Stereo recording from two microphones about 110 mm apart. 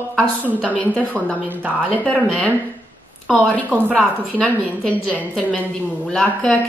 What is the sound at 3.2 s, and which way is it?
A woman's voice, 10° left (ahead or behind).